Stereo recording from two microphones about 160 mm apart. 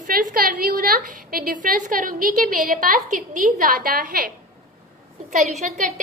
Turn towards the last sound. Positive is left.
turn(degrees=-45)  # may be behind; listen again after turning